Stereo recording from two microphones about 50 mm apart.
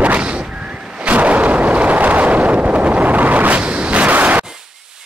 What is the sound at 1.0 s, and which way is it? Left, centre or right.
Artillery fire, right.